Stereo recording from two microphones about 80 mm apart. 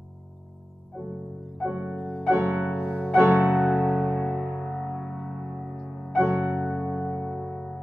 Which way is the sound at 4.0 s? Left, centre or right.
Left.